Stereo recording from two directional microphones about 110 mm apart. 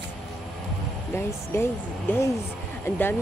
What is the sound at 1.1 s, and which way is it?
Speech, 20° left (ahead or behind).